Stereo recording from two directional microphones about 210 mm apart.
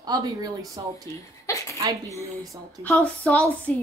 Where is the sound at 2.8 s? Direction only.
5° left (ahead or behind).